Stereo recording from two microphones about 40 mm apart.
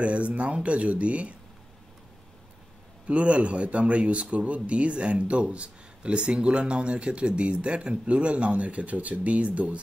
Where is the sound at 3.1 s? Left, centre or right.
Right.